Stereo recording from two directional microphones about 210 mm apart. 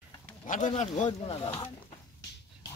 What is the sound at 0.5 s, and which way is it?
Speech, 35° left (ahead or behind).